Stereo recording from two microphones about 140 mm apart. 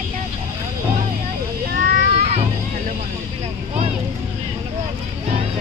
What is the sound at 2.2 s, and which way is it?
Vehicle, 50° right (ahead or behind).